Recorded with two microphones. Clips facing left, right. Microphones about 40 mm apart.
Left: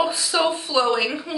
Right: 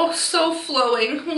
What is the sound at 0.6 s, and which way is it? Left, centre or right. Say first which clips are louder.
Speech: right 1 dB; centre.